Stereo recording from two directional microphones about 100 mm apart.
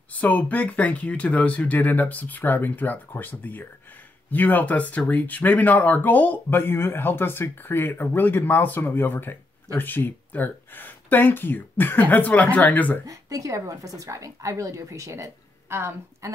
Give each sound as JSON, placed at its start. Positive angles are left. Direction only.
{"t": 0.1, "sound": "speech", "side_deg": 15}
{"t": 13.0, "sound": "a woman's voice", "side_deg": -35}